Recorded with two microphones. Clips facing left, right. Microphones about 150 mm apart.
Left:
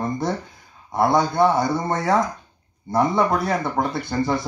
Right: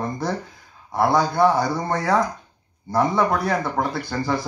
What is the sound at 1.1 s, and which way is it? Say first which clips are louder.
Speech: even; 20° left (ahead or behind).